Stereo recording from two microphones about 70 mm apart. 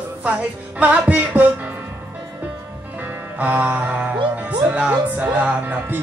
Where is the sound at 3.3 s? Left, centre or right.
Right.